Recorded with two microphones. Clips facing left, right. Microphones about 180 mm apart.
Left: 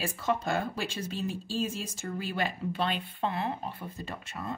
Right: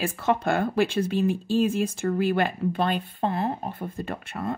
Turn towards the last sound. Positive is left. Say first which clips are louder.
# right 7 dB
turn(degrees=-55)  # may be behind; listen again after turning